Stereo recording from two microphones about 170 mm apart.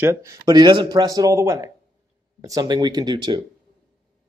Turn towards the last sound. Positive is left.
turn(degrees=-25)  # may be behind; listen again after turning